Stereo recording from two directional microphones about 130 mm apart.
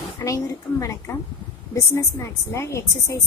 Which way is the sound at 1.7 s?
20° left (ahead or behind).